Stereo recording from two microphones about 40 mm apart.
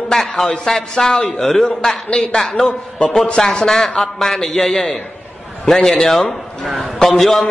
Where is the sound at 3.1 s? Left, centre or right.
Centre.